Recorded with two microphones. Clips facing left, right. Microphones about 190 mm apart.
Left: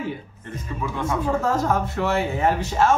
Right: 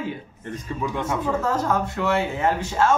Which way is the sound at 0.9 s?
20° right (ahead or behind).